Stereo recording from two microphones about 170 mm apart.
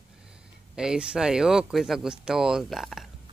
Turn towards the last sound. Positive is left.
turn(degrees=0)  # may be behind; listen again after turning